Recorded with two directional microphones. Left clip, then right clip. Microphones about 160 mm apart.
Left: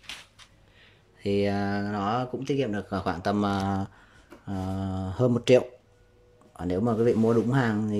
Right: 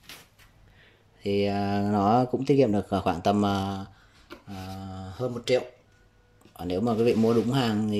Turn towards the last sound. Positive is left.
turn(degrees=-5)  # may be behind; listen again after turning